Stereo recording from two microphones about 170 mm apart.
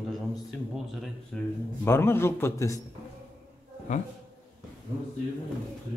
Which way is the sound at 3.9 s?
45° left (ahead or behind).